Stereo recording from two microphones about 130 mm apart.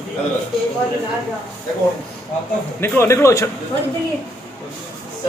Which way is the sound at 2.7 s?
20° left (ahead or behind).